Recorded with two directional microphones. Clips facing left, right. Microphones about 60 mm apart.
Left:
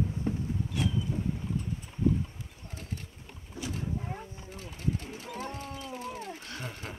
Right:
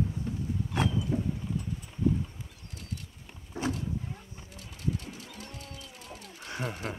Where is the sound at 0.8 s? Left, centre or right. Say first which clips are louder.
Right 3 dB; right.